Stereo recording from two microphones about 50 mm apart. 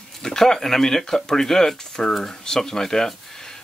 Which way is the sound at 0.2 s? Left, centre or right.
Centre.